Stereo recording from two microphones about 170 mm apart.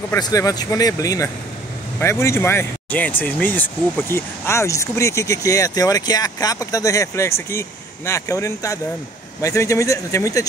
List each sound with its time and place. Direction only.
0.1 s speech: 20° left (ahead or behind)